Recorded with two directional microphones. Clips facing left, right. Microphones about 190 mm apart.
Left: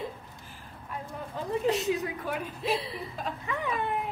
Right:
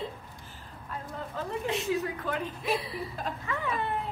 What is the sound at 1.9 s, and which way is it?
A woman's voice, 15° left (ahead or behind).